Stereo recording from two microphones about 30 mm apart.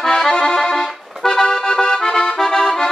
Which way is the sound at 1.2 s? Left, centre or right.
Centre.